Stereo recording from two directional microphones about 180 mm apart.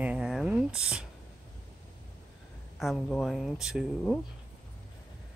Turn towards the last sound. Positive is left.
turn(degrees=-5)  # may be behind; listen again after turning